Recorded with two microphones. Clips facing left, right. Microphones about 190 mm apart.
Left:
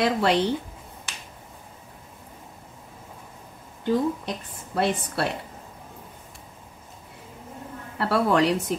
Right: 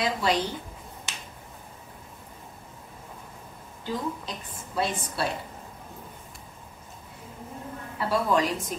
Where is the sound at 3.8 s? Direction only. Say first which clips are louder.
Left 8 dB; 60° left (ahead or behind).